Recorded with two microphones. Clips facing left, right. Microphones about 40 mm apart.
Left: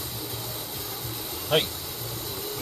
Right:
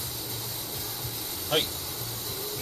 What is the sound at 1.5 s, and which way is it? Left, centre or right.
Speech, centre.